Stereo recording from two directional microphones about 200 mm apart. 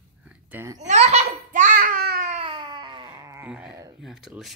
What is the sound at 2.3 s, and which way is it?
Baby cry, 25° right (ahead or behind).